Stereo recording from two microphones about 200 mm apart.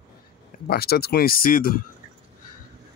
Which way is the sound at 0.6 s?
50° left (ahead or behind).